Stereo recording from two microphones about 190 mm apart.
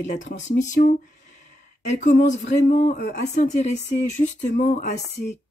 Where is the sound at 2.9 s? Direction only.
60° left (ahead or behind).